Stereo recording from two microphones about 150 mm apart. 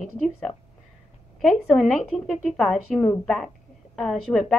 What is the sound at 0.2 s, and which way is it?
A woman's voice, centre (ahead or behind).